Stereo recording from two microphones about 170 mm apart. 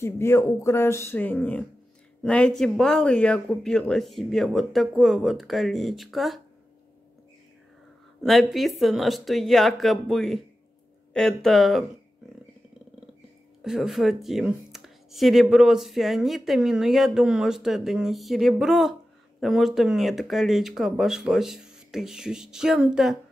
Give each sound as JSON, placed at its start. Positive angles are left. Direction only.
{"t": 0.0, "sound": "speech", "side_deg": 15}
{"t": 8.2, "sound": "speech", "side_deg": 0}
{"t": 13.6, "sound": "speech", "side_deg": 0}